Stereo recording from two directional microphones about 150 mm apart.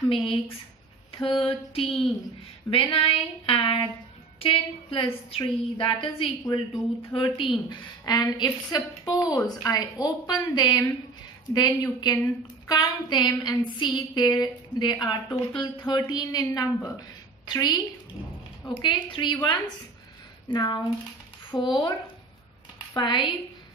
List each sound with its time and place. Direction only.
0.1 s a woman's voice: 35° left (ahead or behind)
7.2 s a sound: 35° left (ahead or behind)
18.7 s a woman's voice: 30° left (ahead or behind)
20.4 s a sound: 30° left (ahead or behind)
21.5 s a woman's voice: 30° left (ahead or behind)
22.9 s a woman's voice: 30° left (ahead or behind)